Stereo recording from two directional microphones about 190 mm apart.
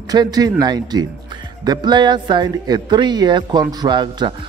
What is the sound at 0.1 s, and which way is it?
Speech, 20° right (ahead or behind).